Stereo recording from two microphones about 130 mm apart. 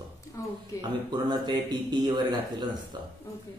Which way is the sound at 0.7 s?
35° right (ahead or behind).